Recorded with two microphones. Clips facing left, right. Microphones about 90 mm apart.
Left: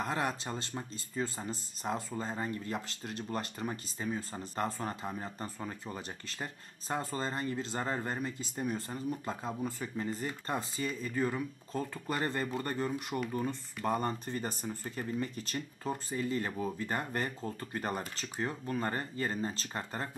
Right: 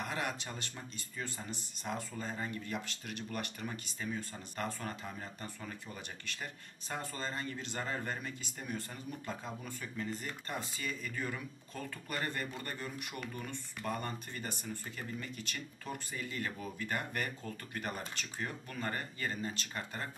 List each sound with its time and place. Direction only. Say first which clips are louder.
0.0 s speech: left 4 dB; 35° left (ahead or behind)